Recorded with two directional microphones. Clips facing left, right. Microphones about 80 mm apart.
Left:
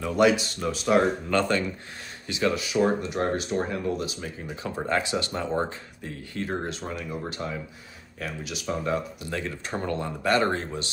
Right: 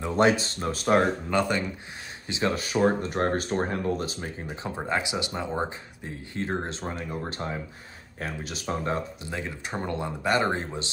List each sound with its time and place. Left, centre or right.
0.0 s speech: right
1.3 s speech: centre
2.5 s speech: right
4.5 s speech: right
6.3 s speech: right
9.3 s speech: centre